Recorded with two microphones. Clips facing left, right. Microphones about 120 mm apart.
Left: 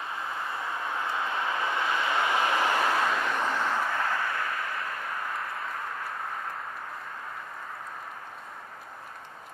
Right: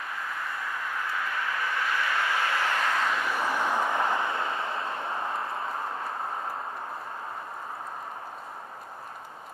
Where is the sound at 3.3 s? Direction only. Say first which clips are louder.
Right 1 dB; 10° right (ahead or behind); by 6.6 s 30° right (ahead or behind).